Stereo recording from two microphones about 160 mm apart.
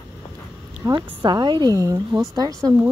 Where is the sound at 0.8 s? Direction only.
25° right (ahead or behind).